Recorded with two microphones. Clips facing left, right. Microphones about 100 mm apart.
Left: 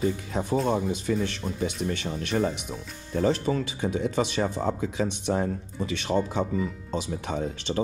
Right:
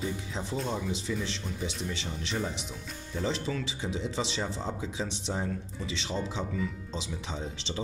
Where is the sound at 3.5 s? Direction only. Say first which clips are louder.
Left 7 dB; 40° left (ahead or behind).